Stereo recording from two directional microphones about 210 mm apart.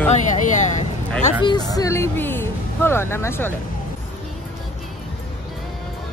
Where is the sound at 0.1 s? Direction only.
35° left (ahead or behind).